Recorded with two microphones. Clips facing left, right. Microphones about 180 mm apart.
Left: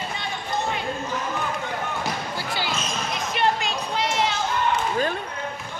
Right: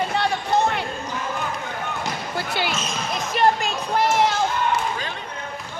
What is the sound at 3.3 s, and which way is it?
Music, 45° right (ahead or behind).